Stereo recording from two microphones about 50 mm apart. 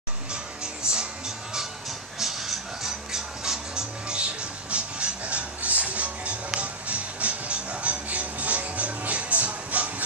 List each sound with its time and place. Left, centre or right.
0.8 s music: centre; by 10.0 s right